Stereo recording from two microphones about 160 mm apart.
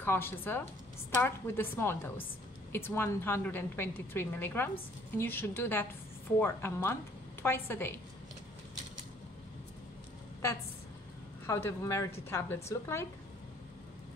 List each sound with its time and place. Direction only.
0.0 s a woman's voice: 15° left (ahead or behind)
11.4 s a woman's voice: 15° left (ahead or behind)